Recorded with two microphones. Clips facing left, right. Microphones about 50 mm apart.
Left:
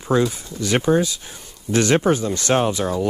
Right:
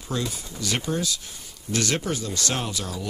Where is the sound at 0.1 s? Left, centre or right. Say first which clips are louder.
Left 11 dB; left.